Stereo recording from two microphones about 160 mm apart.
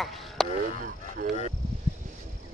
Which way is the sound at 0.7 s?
60° right (ahead or behind).